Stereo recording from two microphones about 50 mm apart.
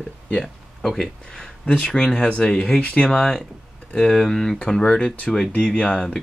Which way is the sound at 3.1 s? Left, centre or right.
Centre.